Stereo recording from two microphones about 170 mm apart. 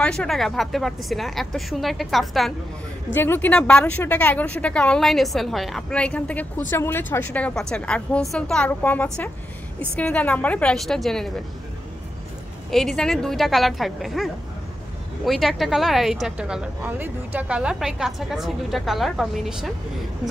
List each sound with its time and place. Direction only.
0.0 s a woman's voice: 5° left (ahead or behind)
3.1 s a woman's voice: 10° left (ahead or behind)
12.7 s a woman's voice: centre (ahead or behind)